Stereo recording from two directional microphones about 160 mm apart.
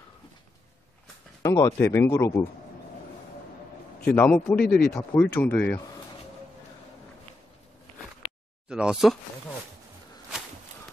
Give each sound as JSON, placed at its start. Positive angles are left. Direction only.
{"t": 1.4, "sound": "speech", "side_deg": 20}
{"t": 4.0, "sound": "speech", "side_deg": 10}
{"t": 4.6, "sound": "speech", "side_deg": 70}
{"t": 4.8, "sound": "speech", "side_deg": 10}
{"t": 8.6, "sound": "speech", "side_deg": -5}